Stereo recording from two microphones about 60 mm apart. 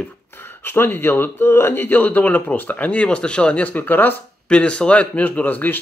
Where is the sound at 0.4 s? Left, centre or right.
Left.